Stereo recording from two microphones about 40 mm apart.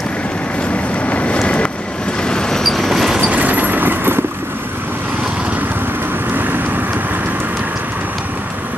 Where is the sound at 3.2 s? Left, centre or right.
Right.